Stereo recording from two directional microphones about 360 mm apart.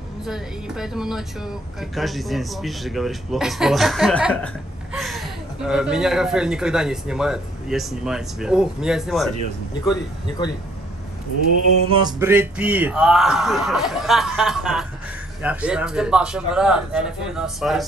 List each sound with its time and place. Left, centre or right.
0.2 s speech: centre
11.9 s speech: centre